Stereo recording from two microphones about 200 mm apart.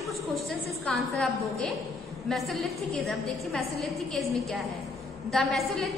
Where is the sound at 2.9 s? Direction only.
Centre (ahead or behind).